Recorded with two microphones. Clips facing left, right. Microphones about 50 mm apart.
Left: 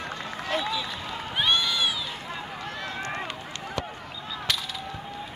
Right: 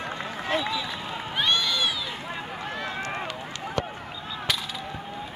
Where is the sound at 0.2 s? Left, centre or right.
Right.